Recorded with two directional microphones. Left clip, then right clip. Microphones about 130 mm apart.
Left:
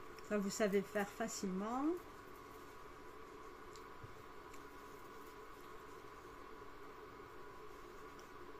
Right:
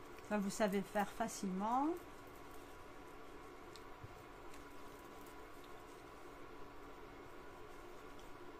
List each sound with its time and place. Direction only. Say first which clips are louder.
0.3 s a woman's voice: left 1 dB; 20° right (ahead or behind)